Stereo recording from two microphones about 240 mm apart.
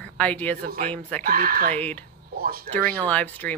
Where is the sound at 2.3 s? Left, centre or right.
Right.